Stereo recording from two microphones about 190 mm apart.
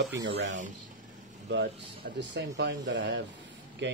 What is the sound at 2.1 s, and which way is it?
Speech, 65° right (ahead or behind).